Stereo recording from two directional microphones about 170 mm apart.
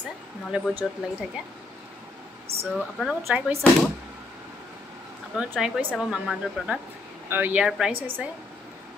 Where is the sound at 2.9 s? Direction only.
Centre (ahead or behind).